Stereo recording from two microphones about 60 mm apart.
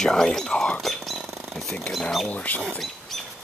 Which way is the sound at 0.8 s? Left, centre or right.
Centre.